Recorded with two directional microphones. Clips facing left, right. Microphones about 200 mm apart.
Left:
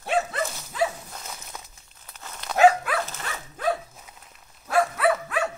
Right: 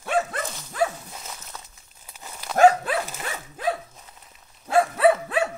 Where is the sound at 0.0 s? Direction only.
50° right (ahead or behind).